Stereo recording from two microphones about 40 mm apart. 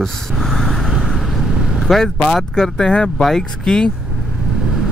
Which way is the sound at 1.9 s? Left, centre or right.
Centre.